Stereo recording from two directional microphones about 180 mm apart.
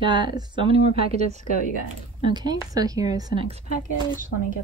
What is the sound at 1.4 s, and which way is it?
Speech, 45° left (ahead or behind).